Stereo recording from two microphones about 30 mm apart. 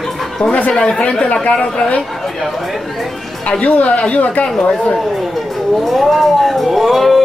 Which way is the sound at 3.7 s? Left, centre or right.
Left.